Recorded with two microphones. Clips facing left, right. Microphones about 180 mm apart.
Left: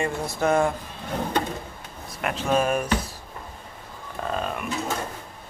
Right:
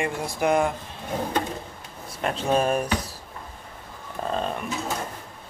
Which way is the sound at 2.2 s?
30° right (ahead or behind).